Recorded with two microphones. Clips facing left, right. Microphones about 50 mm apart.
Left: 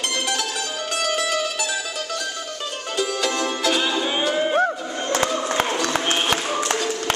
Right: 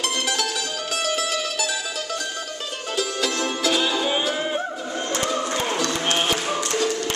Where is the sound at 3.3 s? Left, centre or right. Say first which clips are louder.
Even; centre.